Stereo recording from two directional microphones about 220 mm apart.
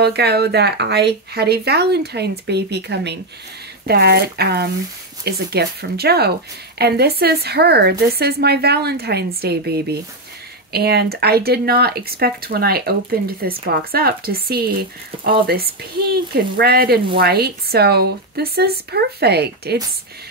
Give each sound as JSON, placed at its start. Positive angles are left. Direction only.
{"t": 0.0, "sound": "speech", "side_deg": -45}